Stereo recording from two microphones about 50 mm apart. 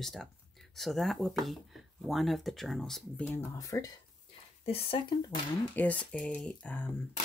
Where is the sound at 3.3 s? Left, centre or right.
Left.